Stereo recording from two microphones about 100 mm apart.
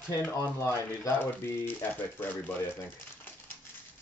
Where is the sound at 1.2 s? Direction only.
20° left (ahead or behind).